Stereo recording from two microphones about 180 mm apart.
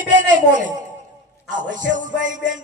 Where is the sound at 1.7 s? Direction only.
45° right (ahead or behind).